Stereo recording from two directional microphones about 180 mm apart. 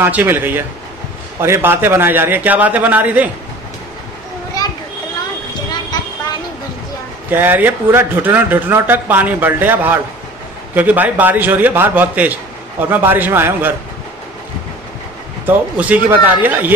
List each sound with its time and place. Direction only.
0.0 s speech: 10° right (ahead or behind)
4.6 s children playing: 20° left (ahead or behind)
7.2 s speech: 10° right (ahead or behind)
15.4 s speech: 10° right (ahead or behind)